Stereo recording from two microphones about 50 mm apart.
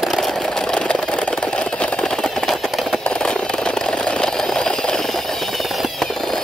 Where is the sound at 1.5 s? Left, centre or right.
Left; by 3.0 s centre.